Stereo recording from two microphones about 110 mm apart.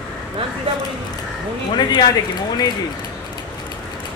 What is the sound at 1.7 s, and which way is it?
Speech, 40° left (ahead or behind).